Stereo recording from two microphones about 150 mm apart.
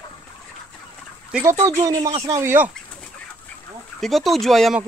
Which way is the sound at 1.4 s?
20° right (ahead or behind).